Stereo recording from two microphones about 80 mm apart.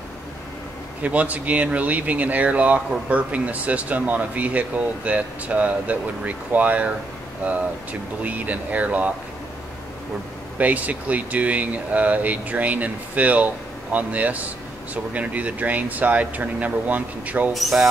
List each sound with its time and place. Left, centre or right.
1.0 s speech: centre
8.2 s speech: centre
10.6 s speech: centre
17.6 s speech: centre